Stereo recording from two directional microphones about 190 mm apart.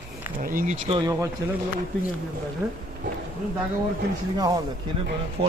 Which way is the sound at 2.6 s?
Centre (ahead or behind).